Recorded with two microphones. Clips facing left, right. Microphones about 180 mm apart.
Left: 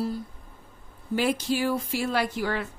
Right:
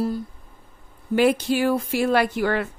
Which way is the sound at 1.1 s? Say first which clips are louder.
Right 6 dB; 65° right (ahead or behind).